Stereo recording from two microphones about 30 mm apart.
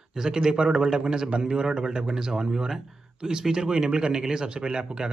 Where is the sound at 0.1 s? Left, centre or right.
Centre.